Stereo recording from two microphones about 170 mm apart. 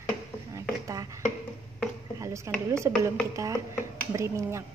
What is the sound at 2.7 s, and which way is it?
Speech, 15° right (ahead or behind).